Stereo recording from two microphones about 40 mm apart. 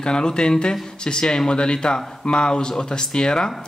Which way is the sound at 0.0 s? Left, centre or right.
Left.